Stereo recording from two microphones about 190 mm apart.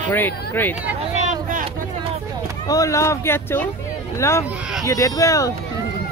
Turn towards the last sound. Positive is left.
turn(degrees=15)  # may be behind; listen again after turning